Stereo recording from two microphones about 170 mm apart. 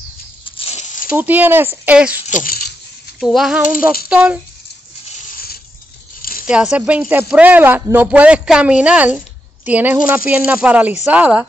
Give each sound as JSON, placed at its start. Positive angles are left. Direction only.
{"t": 0.5, "sound": "a sound", "side_deg": 35}
{"t": 1.1, "sound": "speech", "side_deg": -10}
{"t": 2.2, "sound": "speech", "side_deg": 50}
{"t": 3.2, "sound": "a sound", "side_deg": 0}
{"t": 4.1, "sound": "speech", "side_deg": -5}
{"t": 6.4, "sound": "speech", "side_deg": -5}